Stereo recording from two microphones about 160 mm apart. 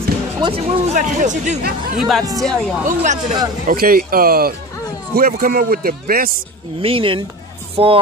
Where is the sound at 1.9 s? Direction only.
Centre (ahead or behind).